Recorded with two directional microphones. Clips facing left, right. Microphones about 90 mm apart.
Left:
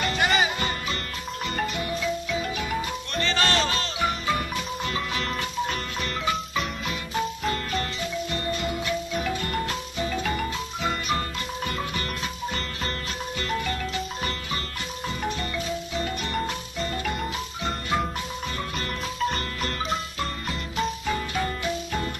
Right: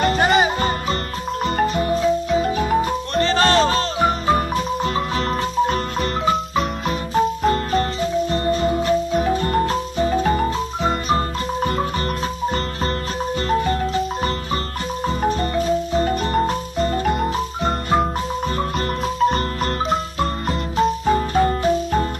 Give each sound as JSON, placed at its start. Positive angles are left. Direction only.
{"t": 0.0, "sound": "music", "side_deg": -40}
{"t": 13.5, "sound": "music", "side_deg": -35}
{"t": 19.1, "sound": "music", "side_deg": -40}